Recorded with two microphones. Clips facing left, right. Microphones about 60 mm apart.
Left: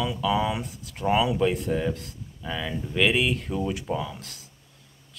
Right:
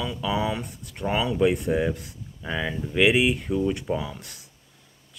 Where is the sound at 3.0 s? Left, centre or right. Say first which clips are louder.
Right 3 dB; centre.